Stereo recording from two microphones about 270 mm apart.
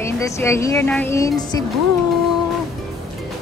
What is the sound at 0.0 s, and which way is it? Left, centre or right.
Speech, centre.